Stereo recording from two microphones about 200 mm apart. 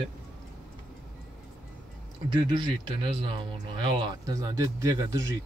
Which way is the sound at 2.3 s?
20° right (ahead or behind).